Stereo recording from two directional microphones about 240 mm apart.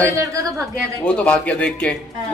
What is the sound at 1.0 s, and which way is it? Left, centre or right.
Speech, centre.